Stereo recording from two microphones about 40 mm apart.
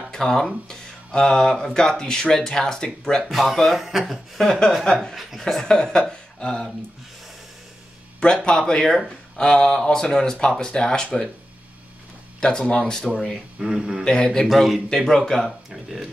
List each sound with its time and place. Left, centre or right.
0.1 s speech: centre
3.3 s speech: centre
4.4 s speech: centre
8.5 s speech: centre
12.4 s speech: left
13.6 s speech: centre
14.0 s speech: centre
14.5 s speech: centre
15.7 s speech: centre